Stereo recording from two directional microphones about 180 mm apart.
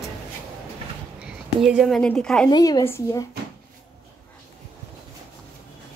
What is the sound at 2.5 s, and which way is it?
Speech, 25° left (ahead or behind).